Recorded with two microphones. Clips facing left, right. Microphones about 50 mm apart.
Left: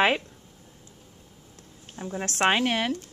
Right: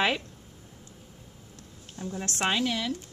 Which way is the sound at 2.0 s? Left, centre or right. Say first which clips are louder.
Left 3 dB; left.